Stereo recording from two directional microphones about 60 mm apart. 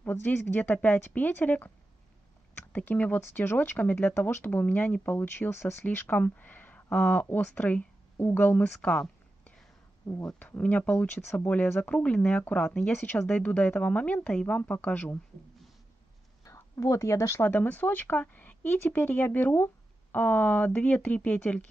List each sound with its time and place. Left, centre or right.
0.0 s speech: left
10.6 s speech: left
16.4 s speech: left
17.4 s speech: left